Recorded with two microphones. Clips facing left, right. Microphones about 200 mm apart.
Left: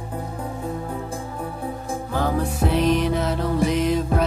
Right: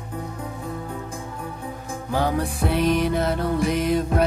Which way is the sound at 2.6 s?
30° left (ahead or behind).